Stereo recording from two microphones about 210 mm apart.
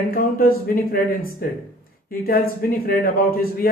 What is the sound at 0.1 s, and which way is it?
A man's voice, 45° left (ahead or behind).